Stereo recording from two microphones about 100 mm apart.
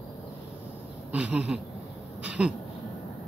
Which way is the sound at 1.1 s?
10° right (ahead or behind).